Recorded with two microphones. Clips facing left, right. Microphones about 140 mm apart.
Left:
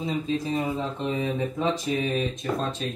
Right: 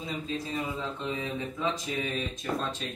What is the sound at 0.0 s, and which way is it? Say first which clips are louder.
Speech: left 7 dB; 25° left (ahead or behind).